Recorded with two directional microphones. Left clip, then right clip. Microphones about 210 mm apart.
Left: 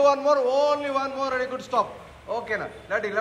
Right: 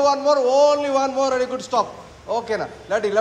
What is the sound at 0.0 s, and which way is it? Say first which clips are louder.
A man's voice: right 3 dB; 15° right (ahead or behind).